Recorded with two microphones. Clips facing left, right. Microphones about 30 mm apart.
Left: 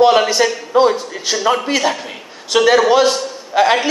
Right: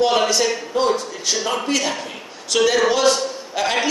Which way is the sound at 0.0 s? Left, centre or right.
Centre.